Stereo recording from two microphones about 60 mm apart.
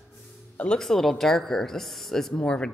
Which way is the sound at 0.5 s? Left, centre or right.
Centre.